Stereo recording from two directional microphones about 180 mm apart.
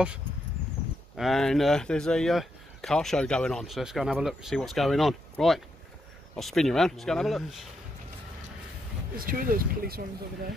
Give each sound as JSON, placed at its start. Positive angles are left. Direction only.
{"t": 1.1, "sound": "speech", "side_deg": 0}
{"t": 9.1, "sound": "speech", "side_deg": -50}